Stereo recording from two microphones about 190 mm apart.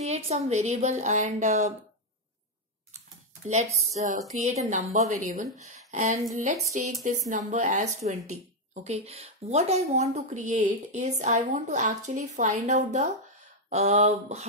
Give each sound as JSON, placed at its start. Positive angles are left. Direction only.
{"t": 0.0, "sound": "a woman's voice", "side_deg": -35}
{"t": 3.4, "sound": "a woman's voice", "side_deg": -40}